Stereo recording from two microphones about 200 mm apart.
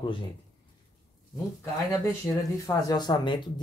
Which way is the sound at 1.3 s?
15° left (ahead or behind).